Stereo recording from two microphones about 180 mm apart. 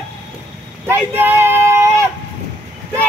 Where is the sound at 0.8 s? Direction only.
10° right (ahead or behind).